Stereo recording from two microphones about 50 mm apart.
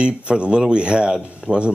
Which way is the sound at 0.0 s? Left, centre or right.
Right.